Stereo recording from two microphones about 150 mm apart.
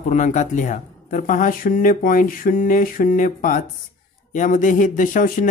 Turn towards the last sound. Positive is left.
turn(degrees=65)  # may be behind; listen again after turning